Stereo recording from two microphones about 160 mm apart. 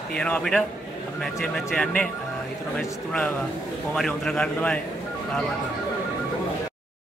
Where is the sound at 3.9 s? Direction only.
5° left (ahead or behind).